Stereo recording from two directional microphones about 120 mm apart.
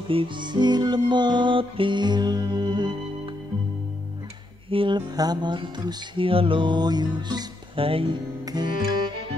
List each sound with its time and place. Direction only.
0.1 s music: 45° right (ahead or behind)
4.6 s music: 45° right (ahead or behind)
7.8 s music: 50° right (ahead or behind)
8.5 s music: 35° right (ahead or behind)